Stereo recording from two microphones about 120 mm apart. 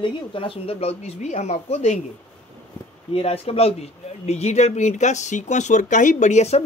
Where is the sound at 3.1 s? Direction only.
55° left (ahead or behind).